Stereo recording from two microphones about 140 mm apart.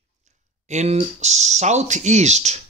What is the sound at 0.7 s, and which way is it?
Speech, 55° right (ahead or behind).